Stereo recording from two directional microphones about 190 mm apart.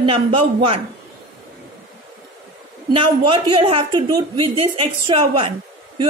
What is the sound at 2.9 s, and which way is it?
A woman's voice, 25° right (ahead or behind).